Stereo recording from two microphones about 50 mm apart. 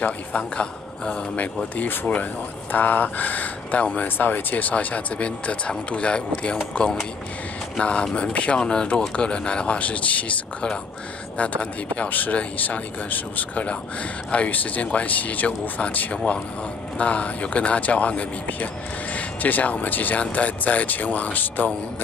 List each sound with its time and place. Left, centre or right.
0.0 s speech: left
4.2 s speech: left